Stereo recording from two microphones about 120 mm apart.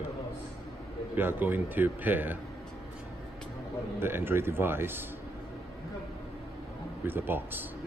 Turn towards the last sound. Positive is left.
turn(degrees=-15)  # may be behind; listen again after turning